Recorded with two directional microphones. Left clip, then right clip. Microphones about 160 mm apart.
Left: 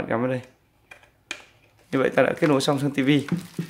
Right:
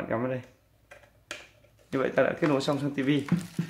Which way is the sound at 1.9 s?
65° left (ahead or behind).